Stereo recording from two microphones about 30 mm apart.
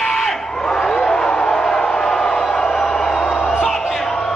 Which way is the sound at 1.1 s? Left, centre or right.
Left.